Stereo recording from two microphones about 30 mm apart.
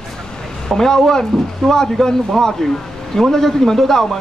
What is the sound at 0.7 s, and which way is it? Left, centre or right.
Speech, centre.